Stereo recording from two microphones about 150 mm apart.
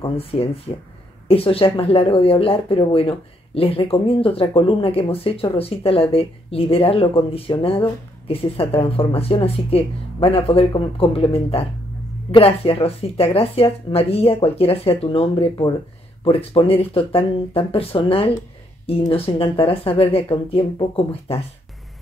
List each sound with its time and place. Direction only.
0.0 s speech: 40° left (ahead or behind)